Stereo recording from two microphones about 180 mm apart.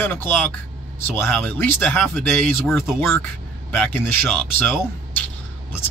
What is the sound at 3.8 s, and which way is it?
Speech, 5° left (ahead or behind).